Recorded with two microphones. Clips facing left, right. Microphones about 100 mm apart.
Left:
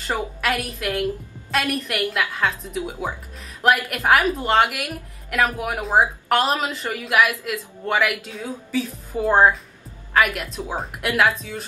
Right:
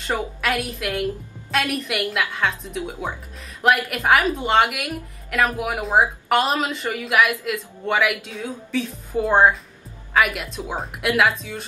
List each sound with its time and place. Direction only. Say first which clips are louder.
0.4 s speech: even; centre (ahead or behind)